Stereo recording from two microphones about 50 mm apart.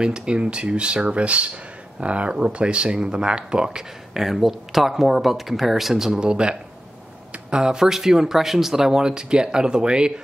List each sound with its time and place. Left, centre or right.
0.0 s speech: centre